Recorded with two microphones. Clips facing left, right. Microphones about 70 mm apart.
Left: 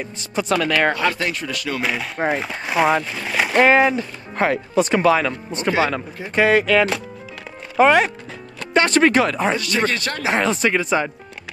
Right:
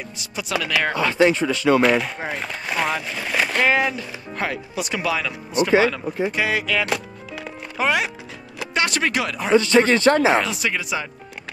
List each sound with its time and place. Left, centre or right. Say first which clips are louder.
0.2 s speech: left 6 dB; left
0.9 s speech: right 4 dB; right
1.8 s speech: right 4 dB; centre
3.5 s speech: left 7 dB; left
9.6 s speech: right 5 dB; right
10.4 s speech: left 6 dB; left